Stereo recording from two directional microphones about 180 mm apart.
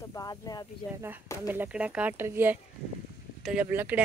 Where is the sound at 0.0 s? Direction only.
20° left (ahead or behind).